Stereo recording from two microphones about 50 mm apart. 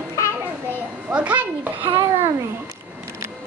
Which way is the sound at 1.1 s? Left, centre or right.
Right.